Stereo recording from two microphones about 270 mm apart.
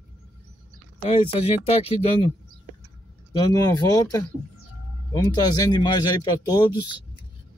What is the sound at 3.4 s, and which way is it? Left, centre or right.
Speech, centre.